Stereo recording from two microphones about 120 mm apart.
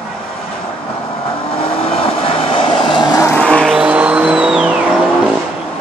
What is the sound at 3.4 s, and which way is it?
Music, 5° left (ahead or behind).